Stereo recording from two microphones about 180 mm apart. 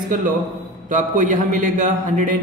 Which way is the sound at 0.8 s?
45° right (ahead or behind).